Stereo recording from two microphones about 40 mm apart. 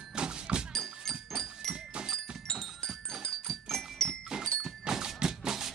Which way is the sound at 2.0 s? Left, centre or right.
Centre.